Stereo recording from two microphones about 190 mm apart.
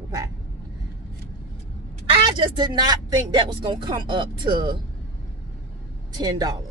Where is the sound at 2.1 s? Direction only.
25° right (ahead or behind).